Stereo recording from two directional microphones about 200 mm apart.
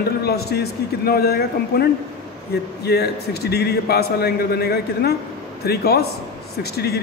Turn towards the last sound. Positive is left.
turn(degrees=55)  # may be behind; listen again after turning